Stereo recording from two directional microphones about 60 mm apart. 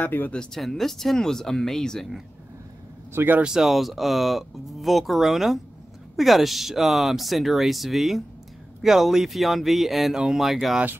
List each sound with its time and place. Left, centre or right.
0.0 s speech: left
0.6 s speech: centre
3.1 s speech: right
3.4 s speech: centre